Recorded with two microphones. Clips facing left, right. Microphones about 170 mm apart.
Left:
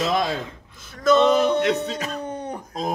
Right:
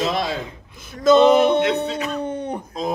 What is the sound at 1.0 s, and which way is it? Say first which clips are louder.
Speech: right 4 dB; 25° right (ahead or behind).